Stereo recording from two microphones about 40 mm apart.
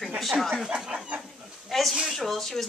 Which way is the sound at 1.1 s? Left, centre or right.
Right.